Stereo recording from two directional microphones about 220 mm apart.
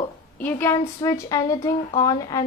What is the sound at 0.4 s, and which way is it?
A woman's voice, 10° left (ahead or behind).